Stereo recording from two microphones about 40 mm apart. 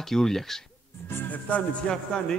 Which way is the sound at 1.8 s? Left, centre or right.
Left.